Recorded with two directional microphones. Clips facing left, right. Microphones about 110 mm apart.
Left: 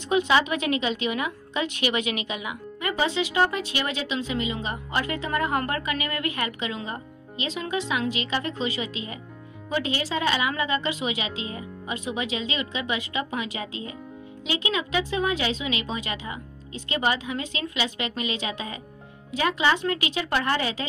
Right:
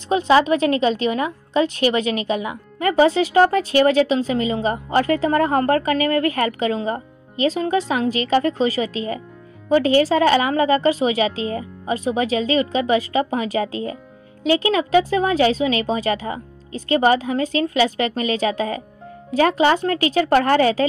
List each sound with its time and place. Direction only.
0.1 s a woman's voice: 35° right (ahead or behind)